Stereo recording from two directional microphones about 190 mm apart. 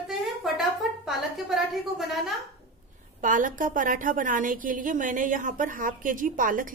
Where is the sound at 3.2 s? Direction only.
45° right (ahead or behind).